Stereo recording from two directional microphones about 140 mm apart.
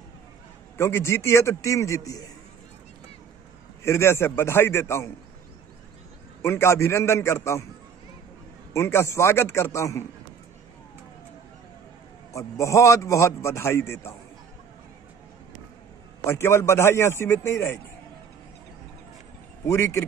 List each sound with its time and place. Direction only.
0.7 s a man's voice: 20° left (ahead or behind)
3.8 s a man's voice: 20° left (ahead or behind)
6.4 s a man's voice: 20° left (ahead or behind)
8.7 s a man's voice: 20° left (ahead or behind)
12.3 s a man's voice: 20° left (ahead or behind)
16.3 s a man's voice: 20° left (ahead or behind)
19.6 s a man's voice: 20° left (ahead or behind)